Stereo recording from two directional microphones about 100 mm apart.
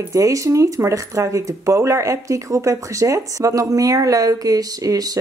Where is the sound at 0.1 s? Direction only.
35° right (ahead or behind).